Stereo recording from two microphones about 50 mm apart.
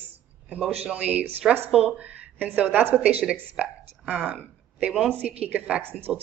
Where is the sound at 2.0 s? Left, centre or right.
Right.